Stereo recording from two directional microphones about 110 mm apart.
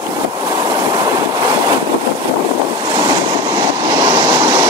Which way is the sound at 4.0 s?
40° right (ahead or behind).